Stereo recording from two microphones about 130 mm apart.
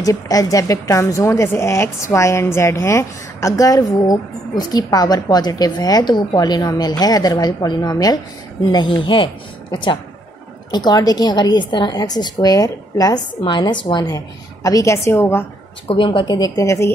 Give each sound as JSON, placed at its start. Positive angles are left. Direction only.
{"t": 0.0, "sound": "a woman's voice", "side_deg": 25}
{"t": 15.9, "sound": "a woman's voice", "side_deg": 40}